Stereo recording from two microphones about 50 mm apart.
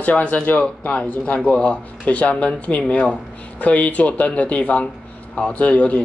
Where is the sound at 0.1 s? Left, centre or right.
Left.